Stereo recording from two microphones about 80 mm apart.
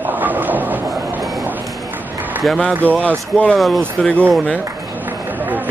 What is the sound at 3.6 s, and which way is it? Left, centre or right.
Speech, centre.